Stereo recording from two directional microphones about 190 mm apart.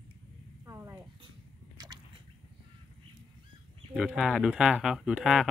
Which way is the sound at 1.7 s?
20° right (ahead or behind).